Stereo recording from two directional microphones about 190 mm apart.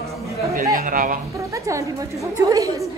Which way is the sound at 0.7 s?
45° right (ahead or behind).